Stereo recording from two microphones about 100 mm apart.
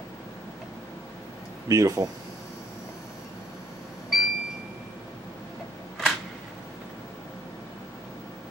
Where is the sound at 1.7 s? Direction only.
35° right (ahead or behind).